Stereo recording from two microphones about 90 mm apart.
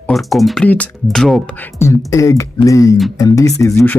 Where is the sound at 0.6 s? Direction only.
15° left (ahead or behind).